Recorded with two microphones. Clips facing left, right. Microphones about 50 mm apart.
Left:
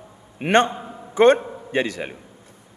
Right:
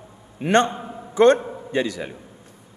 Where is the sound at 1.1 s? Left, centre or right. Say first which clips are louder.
Even; left.